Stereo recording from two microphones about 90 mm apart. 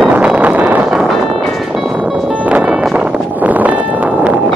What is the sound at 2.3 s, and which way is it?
Music, 15° right (ahead or behind).